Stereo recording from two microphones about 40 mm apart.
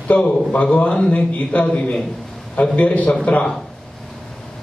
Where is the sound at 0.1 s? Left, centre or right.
Left.